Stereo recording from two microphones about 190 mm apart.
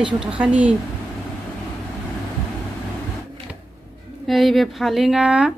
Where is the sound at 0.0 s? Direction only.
5° right (ahead or behind).